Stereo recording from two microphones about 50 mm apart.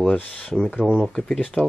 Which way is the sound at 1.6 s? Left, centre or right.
Left.